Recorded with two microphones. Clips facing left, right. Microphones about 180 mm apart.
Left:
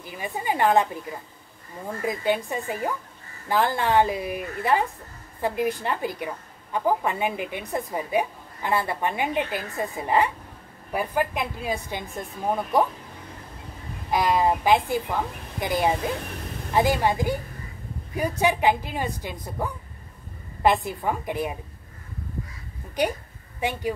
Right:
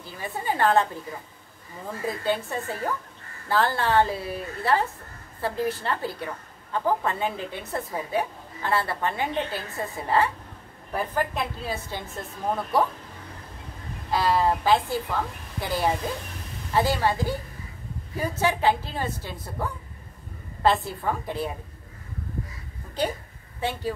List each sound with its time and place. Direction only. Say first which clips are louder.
0.0 s a woman's voice: left 1 dB; 15° left (ahead or behind)
2.0 s a woman's voice: left 2 dB; 15° left (ahead or behind)
14.1 s a woman's voice: left 1 dB; 15° left (ahead or behind)
23.6 s a woman's voice: left 1 dB; 15° left (ahead or behind)